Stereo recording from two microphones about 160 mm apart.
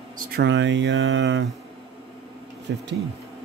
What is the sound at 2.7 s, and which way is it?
Speech, 90° right.